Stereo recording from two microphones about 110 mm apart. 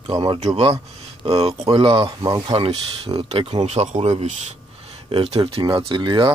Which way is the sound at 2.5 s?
60° right (ahead or behind).